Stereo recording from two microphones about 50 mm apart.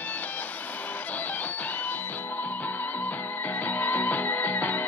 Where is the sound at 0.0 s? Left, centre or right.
Left.